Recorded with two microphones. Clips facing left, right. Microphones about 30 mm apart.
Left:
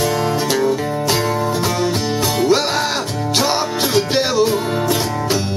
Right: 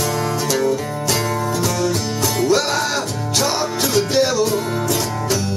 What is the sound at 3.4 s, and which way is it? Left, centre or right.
Music, left.